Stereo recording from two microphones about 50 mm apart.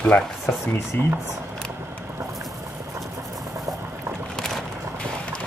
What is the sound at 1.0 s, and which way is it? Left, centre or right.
Speech, right.